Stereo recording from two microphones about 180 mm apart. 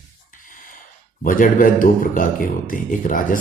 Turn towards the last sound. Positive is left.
turn(degrees=50)  # may be behind; listen again after turning